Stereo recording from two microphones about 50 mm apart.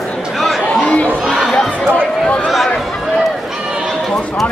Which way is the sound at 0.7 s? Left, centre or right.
Left.